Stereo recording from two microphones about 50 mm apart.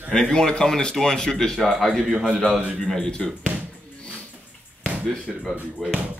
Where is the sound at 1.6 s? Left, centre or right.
Centre.